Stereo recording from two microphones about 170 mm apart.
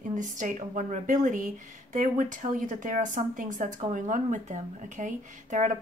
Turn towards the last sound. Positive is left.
turn(degrees=-45)  # may be behind; listen again after turning